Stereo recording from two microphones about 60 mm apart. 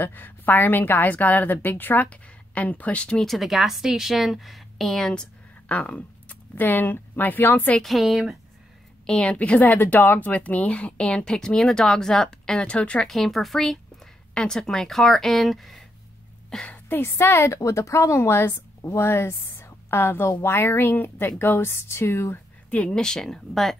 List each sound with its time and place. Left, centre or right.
0.0 s a woman's voice: left
3.3 s a woman's voice: centre
5.1 s speech: centre
7.8 s a woman's voice: centre
9.0 s speech: centre
13.1 s a woman's voice: centre
16.6 s a sound: left
17.0 s speech: left
17.6 s a woman's voice: left
22.8 s speech: centre